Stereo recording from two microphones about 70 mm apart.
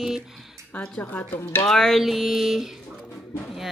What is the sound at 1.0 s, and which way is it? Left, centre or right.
Speech, left.